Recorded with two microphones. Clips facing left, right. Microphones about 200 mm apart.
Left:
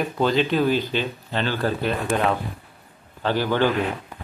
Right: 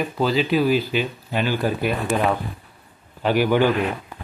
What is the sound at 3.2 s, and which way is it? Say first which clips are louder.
Speech: right 3 dB; 15° right (ahead or behind).